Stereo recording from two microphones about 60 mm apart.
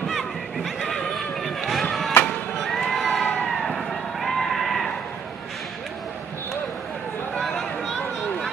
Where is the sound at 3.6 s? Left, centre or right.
Centre.